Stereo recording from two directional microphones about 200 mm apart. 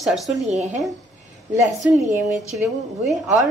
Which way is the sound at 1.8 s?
10° right (ahead or behind).